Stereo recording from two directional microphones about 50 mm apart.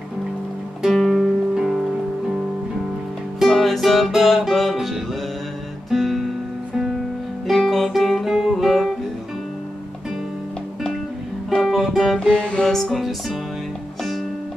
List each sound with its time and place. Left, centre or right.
0.8 s music: centre
3.3 s music: centre
7.4 s music: centre
11.6 s music: centre
12.2 s music: centre
12.9 s music: centre